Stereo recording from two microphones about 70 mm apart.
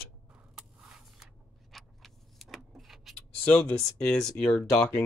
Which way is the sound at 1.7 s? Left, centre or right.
Centre.